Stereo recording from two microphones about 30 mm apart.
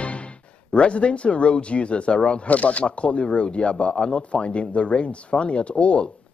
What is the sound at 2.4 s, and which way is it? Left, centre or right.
Speech, left.